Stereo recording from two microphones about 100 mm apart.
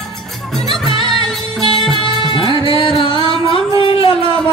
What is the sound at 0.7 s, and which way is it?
Music, 70° left (ahead or behind).